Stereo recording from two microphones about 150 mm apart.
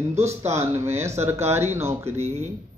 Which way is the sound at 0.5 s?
20° right (ahead or behind).